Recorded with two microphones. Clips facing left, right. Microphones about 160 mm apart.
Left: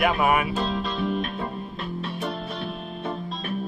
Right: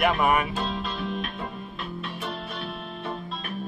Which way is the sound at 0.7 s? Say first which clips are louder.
Left 4 dB; 40° left (ahead or behind).